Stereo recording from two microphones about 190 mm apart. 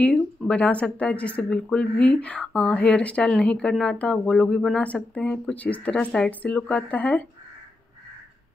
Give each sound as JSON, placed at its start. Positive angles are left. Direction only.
{"t": 0.0, "sound": "a woman's voice", "side_deg": 5}